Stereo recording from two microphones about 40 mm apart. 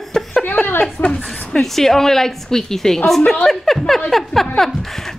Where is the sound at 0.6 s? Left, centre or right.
Centre.